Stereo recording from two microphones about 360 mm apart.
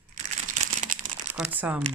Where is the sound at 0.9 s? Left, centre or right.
Right.